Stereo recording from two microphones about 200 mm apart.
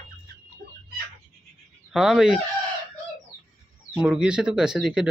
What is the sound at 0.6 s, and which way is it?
Chicken, 55° right (ahead or behind).